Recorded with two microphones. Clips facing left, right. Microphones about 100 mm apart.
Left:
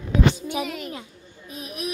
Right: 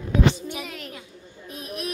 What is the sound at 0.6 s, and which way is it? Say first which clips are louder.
A child's voice: left 6 dB; 5° left (ahead or behind).